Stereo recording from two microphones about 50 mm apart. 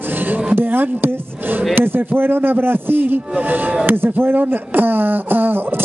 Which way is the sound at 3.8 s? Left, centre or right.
Right.